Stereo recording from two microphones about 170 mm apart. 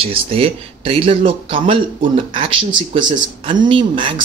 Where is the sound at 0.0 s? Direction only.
35° right (ahead or behind).